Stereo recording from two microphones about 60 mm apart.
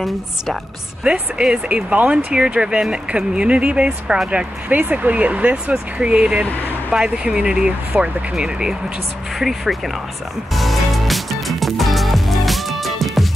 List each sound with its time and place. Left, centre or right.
1.0 s speech: centre
10.5 s music: centre